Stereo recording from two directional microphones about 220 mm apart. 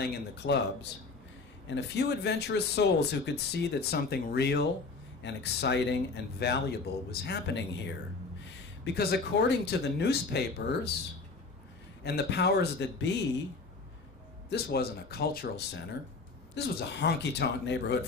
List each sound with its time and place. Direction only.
0.0 s speech: 50° left (ahead or behind)
1.7 s speech: 50° left (ahead or behind)
12.0 s speech: 50° left (ahead or behind)
14.5 s speech: 45° left (ahead or behind)